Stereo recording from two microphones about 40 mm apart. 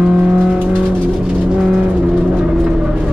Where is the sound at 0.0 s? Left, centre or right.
Right.